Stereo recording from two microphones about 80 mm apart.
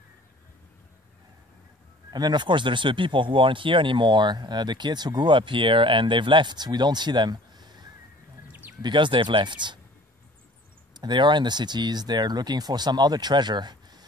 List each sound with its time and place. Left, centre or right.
2.0 s speech: right
8.5 s a sound: right
8.8 s speech: right
11.0 s speech: right